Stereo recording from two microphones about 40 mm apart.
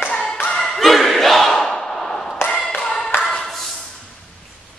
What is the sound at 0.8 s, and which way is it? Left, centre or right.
Battle cry, centre.